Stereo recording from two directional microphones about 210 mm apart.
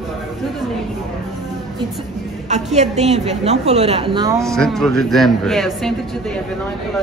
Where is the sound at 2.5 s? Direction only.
35° right (ahead or behind).